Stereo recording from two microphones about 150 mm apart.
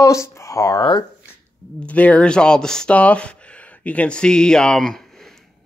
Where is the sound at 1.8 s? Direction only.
10° left (ahead or behind).